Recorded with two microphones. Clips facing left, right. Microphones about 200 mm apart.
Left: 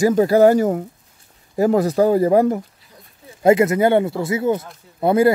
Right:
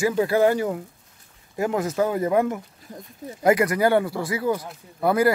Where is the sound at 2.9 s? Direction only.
50° right (ahead or behind).